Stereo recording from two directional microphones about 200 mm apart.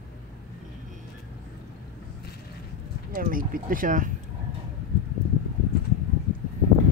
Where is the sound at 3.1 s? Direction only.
45° right (ahead or behind).